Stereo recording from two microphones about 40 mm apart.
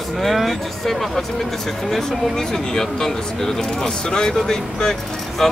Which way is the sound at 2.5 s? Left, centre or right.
Centre.